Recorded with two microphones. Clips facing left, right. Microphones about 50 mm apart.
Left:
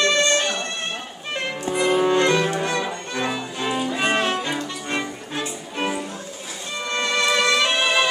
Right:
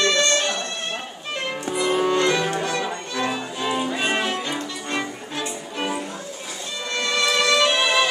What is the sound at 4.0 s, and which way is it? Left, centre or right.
Music, centre.